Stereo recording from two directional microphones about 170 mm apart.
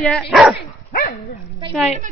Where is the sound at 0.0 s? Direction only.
Centre (ahead or behind).